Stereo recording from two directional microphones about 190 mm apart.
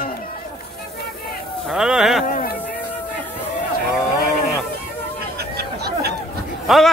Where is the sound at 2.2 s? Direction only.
50° left (ahead or behind).